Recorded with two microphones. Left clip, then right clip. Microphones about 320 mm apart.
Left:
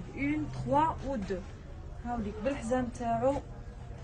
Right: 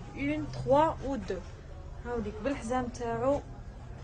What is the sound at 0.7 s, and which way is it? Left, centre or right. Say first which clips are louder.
Speech: even; centre.